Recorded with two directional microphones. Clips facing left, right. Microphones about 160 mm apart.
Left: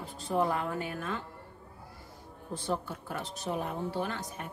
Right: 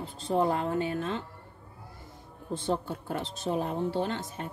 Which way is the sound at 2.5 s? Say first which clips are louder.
Right 4 dB; 25° right (ahead or behind).